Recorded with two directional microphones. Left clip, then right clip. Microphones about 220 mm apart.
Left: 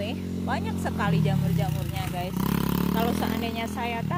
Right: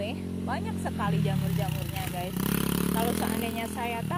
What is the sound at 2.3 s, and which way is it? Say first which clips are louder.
Vehicle: left 1 dB; 45° right (ahead or behind).